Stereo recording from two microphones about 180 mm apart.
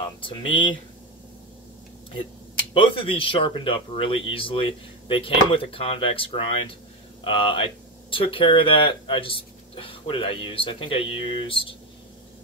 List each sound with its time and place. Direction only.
0.0 s speech: 30° left (ahead or behind)
2.7 s speech: 30° left (ahead or behind)